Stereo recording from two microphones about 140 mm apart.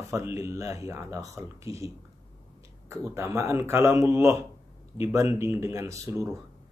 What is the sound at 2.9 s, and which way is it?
Speech, 20° right (ahead or behind).